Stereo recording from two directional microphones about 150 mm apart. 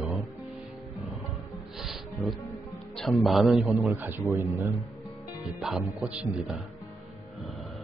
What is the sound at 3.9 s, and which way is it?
Speech, 15° right (ahead or behind).